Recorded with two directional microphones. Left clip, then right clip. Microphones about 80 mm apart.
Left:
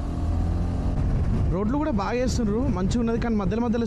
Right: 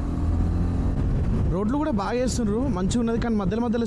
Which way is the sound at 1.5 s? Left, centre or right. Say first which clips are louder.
Even; right.